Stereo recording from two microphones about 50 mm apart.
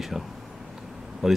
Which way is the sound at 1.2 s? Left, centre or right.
Centre.